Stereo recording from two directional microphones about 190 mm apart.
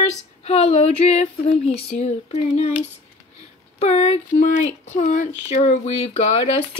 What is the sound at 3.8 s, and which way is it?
Speech, 35° left (ahead or behind).